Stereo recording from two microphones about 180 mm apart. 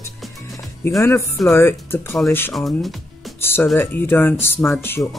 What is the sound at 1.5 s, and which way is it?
Speech, 15° left (ahead or behind).